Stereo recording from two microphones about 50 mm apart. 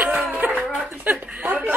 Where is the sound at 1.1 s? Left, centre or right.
Right.